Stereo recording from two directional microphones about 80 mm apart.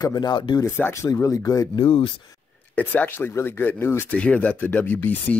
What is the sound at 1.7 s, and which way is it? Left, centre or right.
Speech, left.